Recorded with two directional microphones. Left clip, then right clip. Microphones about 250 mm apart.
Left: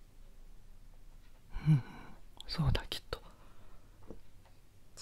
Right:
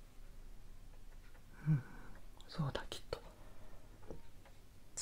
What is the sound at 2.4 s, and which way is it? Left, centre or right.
Whispering, left.